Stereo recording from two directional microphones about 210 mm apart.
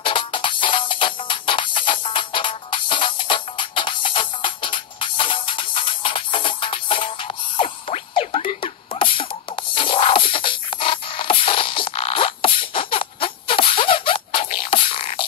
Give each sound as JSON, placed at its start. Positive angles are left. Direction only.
{"t": 0.0, "sound": "music", "side_deg": 25}